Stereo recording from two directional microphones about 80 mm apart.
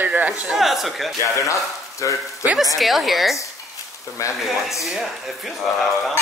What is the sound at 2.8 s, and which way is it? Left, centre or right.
Speech, centre.